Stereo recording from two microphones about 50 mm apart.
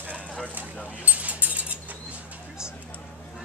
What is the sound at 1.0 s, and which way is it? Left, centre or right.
Keys jangling, right.